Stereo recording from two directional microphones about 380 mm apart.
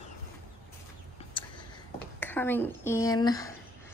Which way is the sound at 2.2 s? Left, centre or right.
Centre.